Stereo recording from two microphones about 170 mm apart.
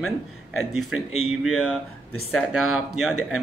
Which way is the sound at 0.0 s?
Centre (ahead or behind).